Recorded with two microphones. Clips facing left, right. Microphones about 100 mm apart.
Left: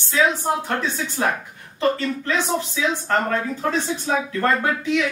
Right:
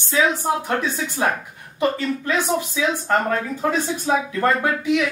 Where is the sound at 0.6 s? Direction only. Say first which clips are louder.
Right 1 dB; 15° right (ahead or behind).